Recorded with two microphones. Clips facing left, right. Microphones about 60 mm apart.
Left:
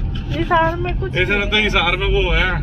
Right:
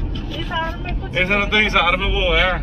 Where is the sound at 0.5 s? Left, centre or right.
Left.